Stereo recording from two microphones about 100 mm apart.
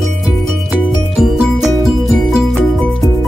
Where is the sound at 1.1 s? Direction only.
Centre (ahead or behind).